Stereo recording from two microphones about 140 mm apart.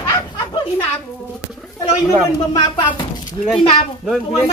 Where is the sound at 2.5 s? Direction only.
35° left (ahead or behind).